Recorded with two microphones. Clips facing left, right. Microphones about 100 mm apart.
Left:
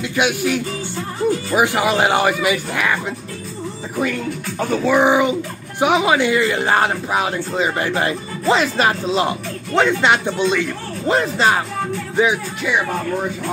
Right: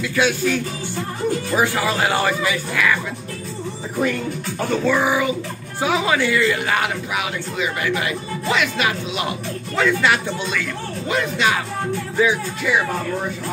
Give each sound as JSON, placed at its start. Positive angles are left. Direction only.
{"t": 0.0, "sound": "music", "side_deg": 20}
{"t": 1.5, "sound": "speech", "side_deg": 15}
{"t": 4.6, "sound": "speech", "side_deg": 20}
{"t": 11.1, "sound": "speech", "side_deg": 35}
{"t": 12.2, "sound": "speech", "side_deg": 20}